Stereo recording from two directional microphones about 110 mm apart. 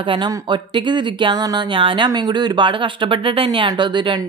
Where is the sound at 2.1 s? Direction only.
40° right (ahead or behind).